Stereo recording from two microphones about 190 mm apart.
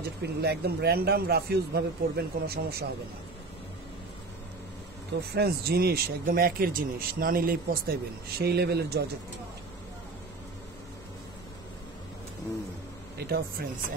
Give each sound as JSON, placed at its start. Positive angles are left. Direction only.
{"t": 0.0, "sound": "speech", "side_deg": -60}
{"t": 5.3, "sound": "speech", "side_deg": -55}